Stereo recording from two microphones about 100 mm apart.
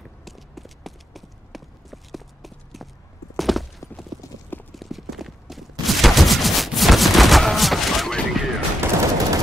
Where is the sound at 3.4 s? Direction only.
Centre (ahead or behind).